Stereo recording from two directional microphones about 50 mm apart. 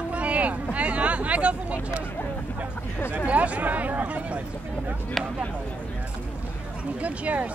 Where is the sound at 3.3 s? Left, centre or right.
Right.